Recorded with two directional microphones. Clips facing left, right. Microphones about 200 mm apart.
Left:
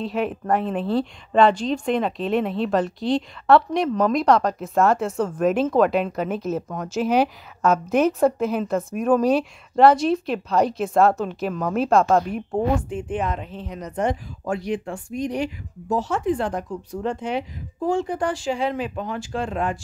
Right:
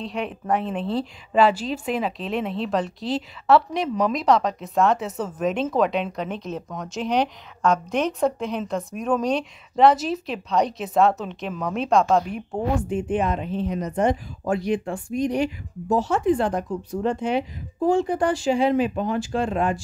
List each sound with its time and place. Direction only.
0.0 s a woman's voice: centre (ahead or behind); by 14.6 s 15° right (ahead or behind)
15.9 s speech: 20° right (ahead or behind); by 17.5 s 5° right (ahead or behind)
17.7 s speech: 25° right (ahead or behind)
18.3 s a woman's voice: 5° right (ahead or behind)